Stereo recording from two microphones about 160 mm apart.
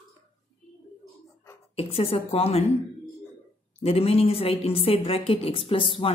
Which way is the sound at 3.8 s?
35° left (ahead or behind).